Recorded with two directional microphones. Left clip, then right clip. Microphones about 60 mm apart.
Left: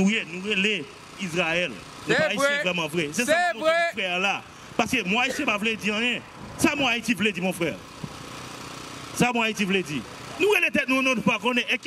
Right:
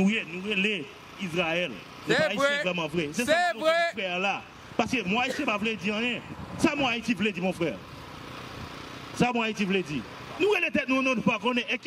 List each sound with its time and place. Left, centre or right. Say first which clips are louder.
0.0 s speech: left 3 dB; left
2.0 s speech: left 2 dB; centre
2.6 s speech: left 3 dB; left
3.3 s speech: left 2 dB; centre
3.9 s speech: left 3 dB; left
9.1 s speech: left 3 dB; left